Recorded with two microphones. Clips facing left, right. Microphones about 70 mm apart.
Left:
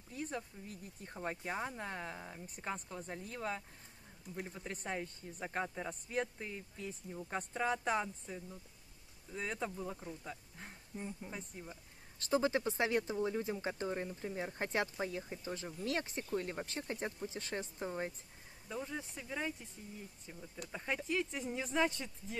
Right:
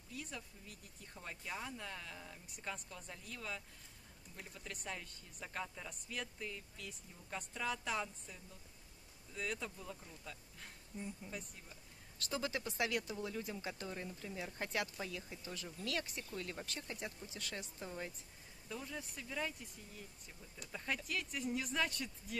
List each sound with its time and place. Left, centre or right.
0.1 s speech: left
18.7 s speech: left